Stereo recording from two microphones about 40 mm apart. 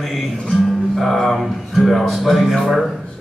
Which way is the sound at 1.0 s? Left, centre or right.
Centre.